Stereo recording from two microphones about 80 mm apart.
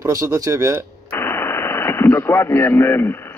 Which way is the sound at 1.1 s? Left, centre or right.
Left.